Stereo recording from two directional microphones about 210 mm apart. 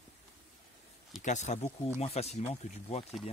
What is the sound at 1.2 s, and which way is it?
Speech, 35° left (ahead or behind).